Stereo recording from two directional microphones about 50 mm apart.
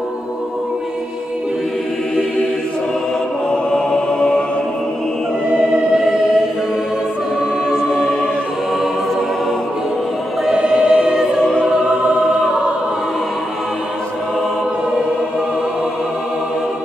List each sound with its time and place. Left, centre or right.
3.5 s music: centre
5.9 s choir: centre
10.4 s choir: centre